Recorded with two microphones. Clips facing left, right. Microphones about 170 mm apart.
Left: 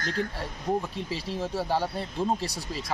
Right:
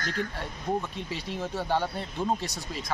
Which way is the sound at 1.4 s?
5° left (ahead or behind).